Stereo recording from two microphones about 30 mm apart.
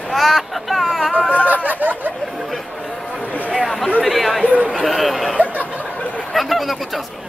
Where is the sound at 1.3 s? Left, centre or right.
Right.